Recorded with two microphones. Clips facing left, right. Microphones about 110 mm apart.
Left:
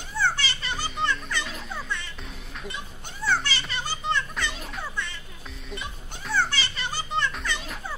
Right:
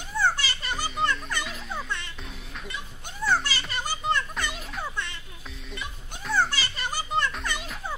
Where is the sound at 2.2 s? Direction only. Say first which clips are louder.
Even; centre (ahead or behind).